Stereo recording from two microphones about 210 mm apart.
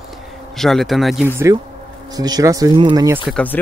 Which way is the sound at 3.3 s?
10° left (ahead or behind).